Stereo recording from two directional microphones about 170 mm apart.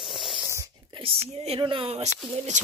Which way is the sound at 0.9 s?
35° right (ahead or behind).